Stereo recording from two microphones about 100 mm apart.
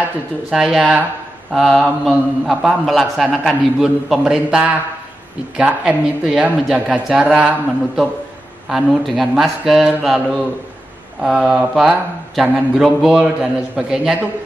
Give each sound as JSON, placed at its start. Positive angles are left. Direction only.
{"t": 0.5, "sound": "a man's voice", "side_deg": -5}